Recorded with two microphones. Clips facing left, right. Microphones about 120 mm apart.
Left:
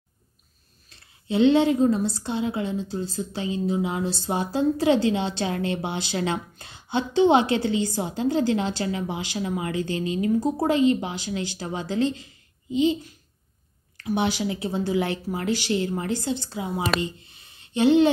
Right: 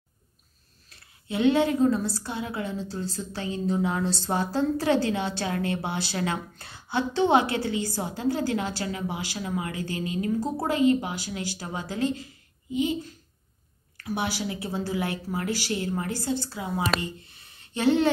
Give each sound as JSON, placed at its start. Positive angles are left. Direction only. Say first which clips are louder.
{"t": 0.8, "sound": "a woman's voice", "louder": "left 6 dB", "side_deg": 25}
{"t": 14.0, "sound": "a woman's voice", "louder": "left 5 dB", "side_deg": 20}